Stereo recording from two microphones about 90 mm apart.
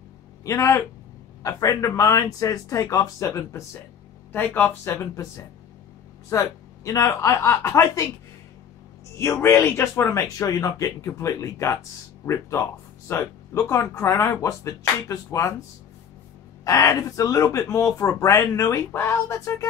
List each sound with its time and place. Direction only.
0.5 s speech: 35° left (ahead or behind)
4.3 s speech: 20° left (ahead or behind)
5.1 s speech: 35° left (ahead or behind)
9.2 s speech: 30° left (ahead or behind)
16.6 s speech: 40° left (ahead or behind)